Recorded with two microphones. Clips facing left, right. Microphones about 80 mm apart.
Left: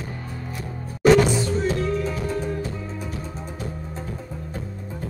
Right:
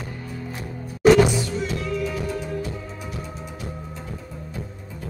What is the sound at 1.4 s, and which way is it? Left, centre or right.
Music, left.